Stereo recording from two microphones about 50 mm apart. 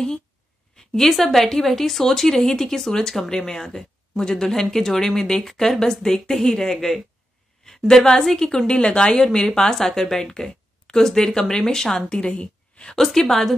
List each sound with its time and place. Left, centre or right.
0.7 s a woman's voice: centre
12.9 s speech: centre